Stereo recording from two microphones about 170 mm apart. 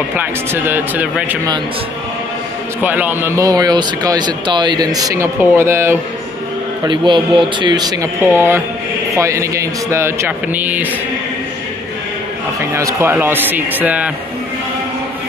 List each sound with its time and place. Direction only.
0.1 s speech: 10° right (ahead or behind)
2.8 s speech: 10° right (ahead or behind)
6.9 s speech: 30° right (ahead or behind)
8.2 s speech: 15° right (ahead or behind)
12.5 s speech: 15° right (ahead or behind)